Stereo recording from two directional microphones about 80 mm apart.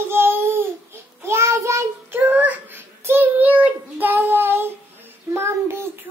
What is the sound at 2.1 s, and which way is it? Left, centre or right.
Child singing, right.